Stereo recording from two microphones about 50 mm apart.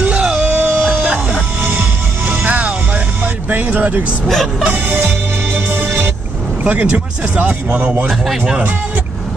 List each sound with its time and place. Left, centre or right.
0.0 s music: right
0.6 s music: right
0.9 s music: right
1.6 s music: right
2.2 s music: right
3.4 s a sound: right
4.6 s music: right
4.9 s music: right
6.6 s speech: right
8.1 s speech: centre